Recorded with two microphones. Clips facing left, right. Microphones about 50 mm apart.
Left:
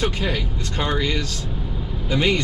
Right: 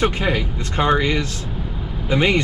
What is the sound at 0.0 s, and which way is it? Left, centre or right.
Speech, right.